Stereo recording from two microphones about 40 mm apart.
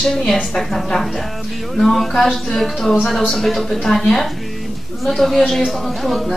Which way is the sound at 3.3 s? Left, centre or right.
Centre.